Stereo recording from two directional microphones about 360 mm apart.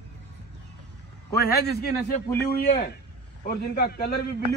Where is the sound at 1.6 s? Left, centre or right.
Left.